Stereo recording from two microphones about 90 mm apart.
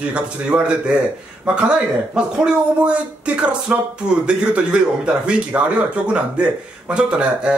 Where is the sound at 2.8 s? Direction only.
15° right (ahead or behind).